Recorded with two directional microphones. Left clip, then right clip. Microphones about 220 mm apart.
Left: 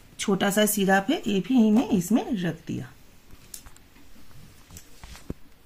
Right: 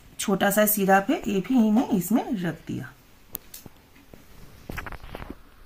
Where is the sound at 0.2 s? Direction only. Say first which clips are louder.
Right 2 dB; 15° left (ahead or behind).